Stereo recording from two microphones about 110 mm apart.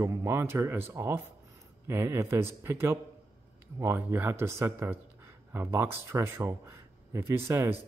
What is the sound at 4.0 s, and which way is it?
Speech, 20° right (ahead or behind).